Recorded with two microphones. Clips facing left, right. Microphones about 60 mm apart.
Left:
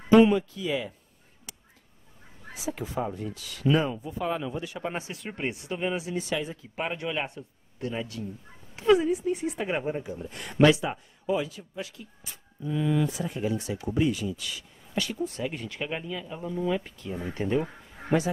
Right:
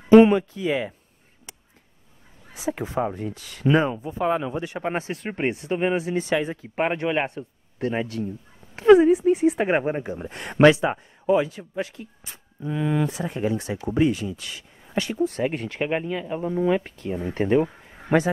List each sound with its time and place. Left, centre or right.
0.1 s speech: right
2.5 s speech: right
15.2 s speech: right